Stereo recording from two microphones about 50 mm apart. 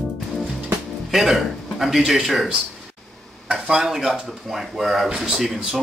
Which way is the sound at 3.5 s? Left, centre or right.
Centre.